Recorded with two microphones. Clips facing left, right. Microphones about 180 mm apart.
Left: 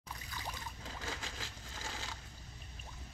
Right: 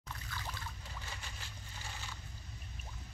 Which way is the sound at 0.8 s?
90° left.